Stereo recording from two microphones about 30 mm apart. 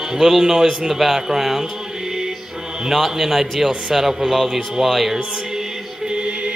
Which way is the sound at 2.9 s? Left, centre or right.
Centre.